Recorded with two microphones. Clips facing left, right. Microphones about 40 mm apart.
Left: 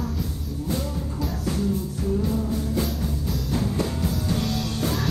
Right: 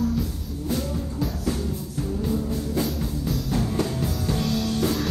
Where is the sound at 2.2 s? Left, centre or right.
Centre.